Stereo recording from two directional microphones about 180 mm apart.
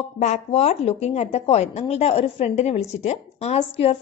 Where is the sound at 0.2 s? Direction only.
35° left (ahead or behind).